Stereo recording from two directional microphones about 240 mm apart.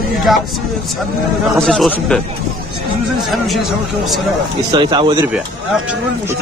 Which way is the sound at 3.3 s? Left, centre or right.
Centre.